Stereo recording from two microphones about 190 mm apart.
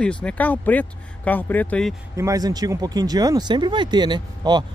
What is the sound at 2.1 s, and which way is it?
Speech, 15° right (ahead or behind).